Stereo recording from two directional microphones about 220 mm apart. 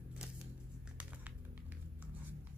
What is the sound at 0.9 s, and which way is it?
Music, 5° right (ahead or behind).